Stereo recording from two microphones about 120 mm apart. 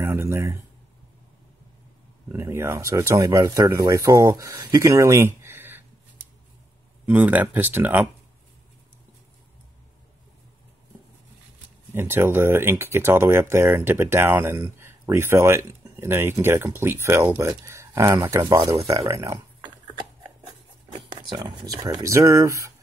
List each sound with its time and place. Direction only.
0.0 s speech: 20° right (ahead or behind)
2.2 s speech: 20° right (ahead or behind)
7.1 s speech: 15° right (ahead or behind)
11.9 s speech: 20° right (ahead or behind)
20.9 s speech: 45° right (ahead or behind)
22.0 s speech: 25° right (ahead or behind)